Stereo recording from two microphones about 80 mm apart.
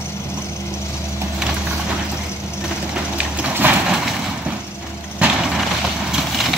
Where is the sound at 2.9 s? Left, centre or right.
Centre.